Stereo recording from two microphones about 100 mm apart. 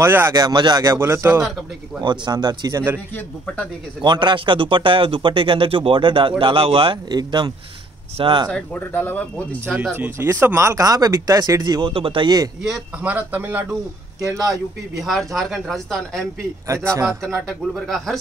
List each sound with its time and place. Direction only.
0.0 s a man's voice: 25° right (ahead or behind)
0.4 s speech: 45° right (ahead or behind)
0.8 s a man's voice: 25° right (ahead or behind)
2.0 s speech: 45° right (ahead or behind)
4.0 s speech: 50° right (ahead or behind); by 7.0 s 65° right (ahead or behind)
7.1 s speech: 45° right (ahead or behind)
8.2 s speech: 55° right (ahead or behind)
8.5 s speech: 20° left (ahead or behind)
9.9 s speech: 25° right (ahead or behind); by 11.9 s 45° right (ahead or behind)
11.9 s speech: 60° right (ahead or behind)
13.0 s speech: 15° right (ahead or behind)
15.0 s speech: centre (ahead or behind)
16.6 s speech: 30° right (ahead or behind)
17.7 s speech: centre (ahead or behind)